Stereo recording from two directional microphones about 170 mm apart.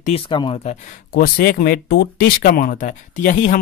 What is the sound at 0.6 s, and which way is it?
Speech, 55° left (ahead or behind).